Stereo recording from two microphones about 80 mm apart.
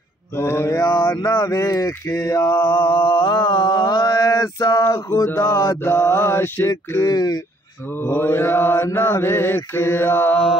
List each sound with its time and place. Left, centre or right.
0.4 s mantra: left
0.8 s mantra: left
1.2 s speech: left
2.1 s mantra: left
5.4 s mantra: left
7.1 s mantra: left
8.0 s mantra: left